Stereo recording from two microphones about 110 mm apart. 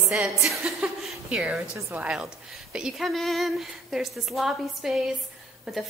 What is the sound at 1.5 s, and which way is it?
Speech, 25° right (ahead or behind).